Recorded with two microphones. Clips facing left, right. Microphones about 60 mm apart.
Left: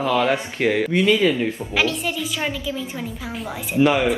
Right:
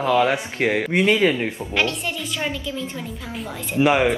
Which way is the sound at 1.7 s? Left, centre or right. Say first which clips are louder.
Left 1 dB; centre.